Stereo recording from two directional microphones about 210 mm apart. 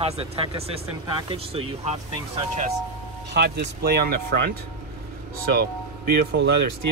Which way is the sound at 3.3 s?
50° right (ahead or behind).